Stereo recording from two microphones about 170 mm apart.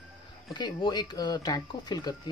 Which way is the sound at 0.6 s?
25° left (ahead or behind).